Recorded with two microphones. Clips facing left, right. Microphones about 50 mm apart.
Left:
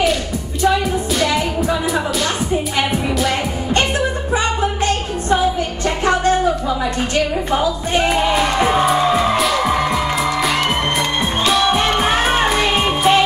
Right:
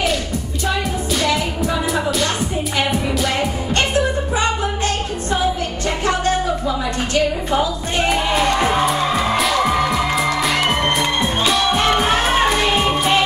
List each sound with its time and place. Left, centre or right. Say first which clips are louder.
1.2 s music: left 1 dB; centre
7.5 s music: left 4 dB; centre
11.4 s music: left 2 dB; centre